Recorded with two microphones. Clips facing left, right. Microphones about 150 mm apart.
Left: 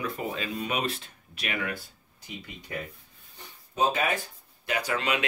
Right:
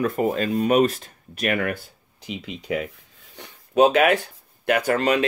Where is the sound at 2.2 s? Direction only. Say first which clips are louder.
Right 10 dB; 90° right.